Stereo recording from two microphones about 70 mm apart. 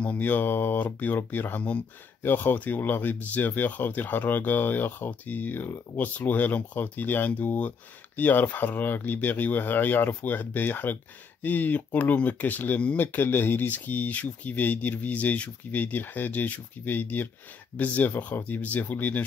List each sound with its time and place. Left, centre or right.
0.0 s speech: left